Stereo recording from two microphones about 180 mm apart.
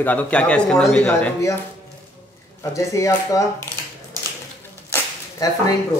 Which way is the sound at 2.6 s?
15° left (ahead or behind).